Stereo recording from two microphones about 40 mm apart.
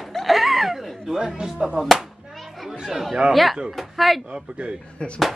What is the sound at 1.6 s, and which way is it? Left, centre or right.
Speech, centre.